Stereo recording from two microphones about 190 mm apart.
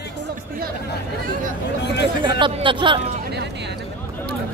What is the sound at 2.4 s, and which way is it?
Speech, 25° right (ahead or behind).